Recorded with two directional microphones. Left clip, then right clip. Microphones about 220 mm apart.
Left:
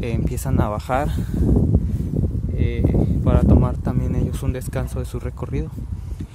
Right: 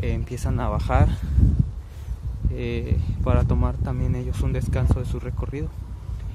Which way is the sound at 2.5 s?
Centre (ahead or behind).